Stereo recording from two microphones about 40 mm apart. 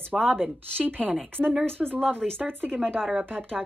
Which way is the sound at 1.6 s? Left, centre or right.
Right.